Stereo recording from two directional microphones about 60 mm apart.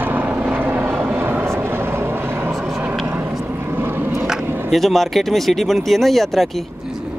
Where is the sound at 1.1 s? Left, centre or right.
Right.